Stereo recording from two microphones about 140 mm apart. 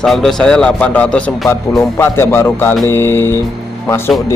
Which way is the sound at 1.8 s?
15° left (ahead or behind).